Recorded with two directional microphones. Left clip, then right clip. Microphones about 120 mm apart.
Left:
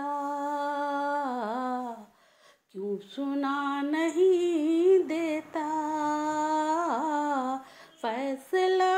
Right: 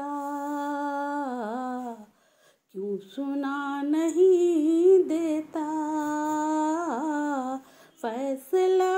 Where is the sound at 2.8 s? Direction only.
30° right (ahead or behind); by 5.3 s 45° right (ahead or behind).